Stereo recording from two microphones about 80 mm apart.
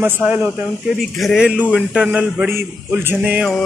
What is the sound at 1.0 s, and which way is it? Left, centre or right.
Speech, centre.